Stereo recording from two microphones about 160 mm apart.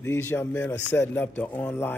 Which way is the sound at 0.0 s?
15° left (ahead or behind).